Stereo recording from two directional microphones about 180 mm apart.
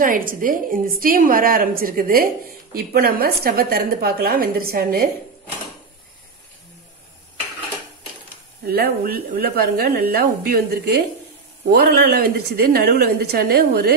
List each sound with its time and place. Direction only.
0.0 s a woman's voice: 50° right (ahead or behind)
8.6 s speech: 60° right (ahead or behind)